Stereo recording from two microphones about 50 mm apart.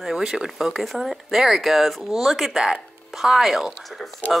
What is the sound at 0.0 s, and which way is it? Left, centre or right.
Speech, centre.